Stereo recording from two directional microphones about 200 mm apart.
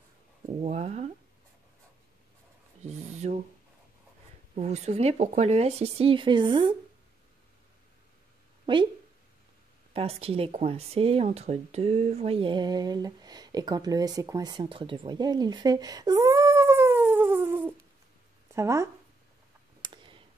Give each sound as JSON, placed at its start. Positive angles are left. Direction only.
{"t": 0.5, "sound": "speech", "side_deg": -30}
{"t": 2.8, "sound": "a sound", "side_deg": -35}
{"t": 4.6, "sound": "speech", "side_deg": -35}
{"t": 9.9, "sound": "speech", "side_deg": -30}
{"t": 19.8, "sound": "clicking", "side_deg": -25}